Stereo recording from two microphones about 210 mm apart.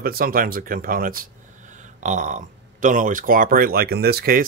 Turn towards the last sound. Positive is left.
turn(degrees=-45)  # may be behind; listen again after turning